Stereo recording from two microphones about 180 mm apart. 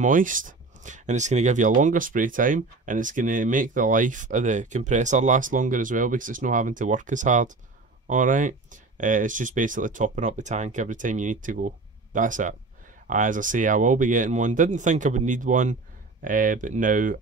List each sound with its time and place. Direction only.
0.0 s speech: 50° right (ahead or behind)